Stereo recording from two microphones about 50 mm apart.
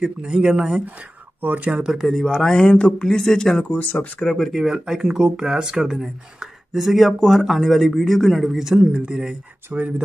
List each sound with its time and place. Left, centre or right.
0.0 s speech: centre
1.4 s speech: right
1.8 s speech: centre
2.2 s speech: centre
3.7 s speech: left
4.2 s speech: centre
4.5 s speech: centre
8.5 s speech: centre
9.7 s speech: right